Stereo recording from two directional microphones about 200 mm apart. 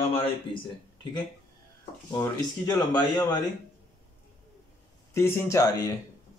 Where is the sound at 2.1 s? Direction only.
15° left (ahead or behind).